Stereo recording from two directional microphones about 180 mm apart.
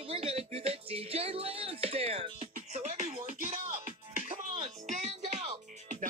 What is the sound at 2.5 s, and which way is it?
Speech, 40° right (ahead or behind).